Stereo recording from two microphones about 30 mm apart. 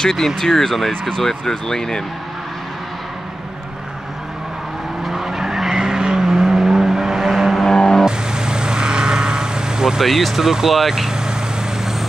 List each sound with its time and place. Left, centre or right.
0.0 s speech: centre
0.7 s speech: centre
1.1 s speech: left
5.0 s vehicle: centre
7.6 s music: centre
8.0 s vehicle: right
9.9 s speech: centre